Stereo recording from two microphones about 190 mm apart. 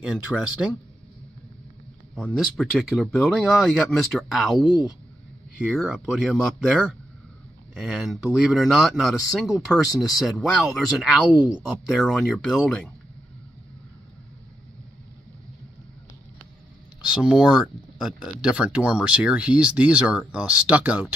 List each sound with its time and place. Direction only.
0.0 s speech: 5° right (ahead or behind)
2.1 s speech: centre (ahead or behind)
17.1 s speech: 5° right (ahead or behind)